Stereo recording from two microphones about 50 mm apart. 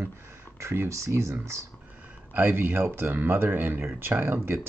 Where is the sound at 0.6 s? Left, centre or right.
Right.